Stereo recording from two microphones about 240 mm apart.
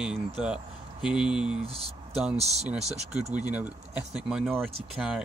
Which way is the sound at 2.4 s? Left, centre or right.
Right.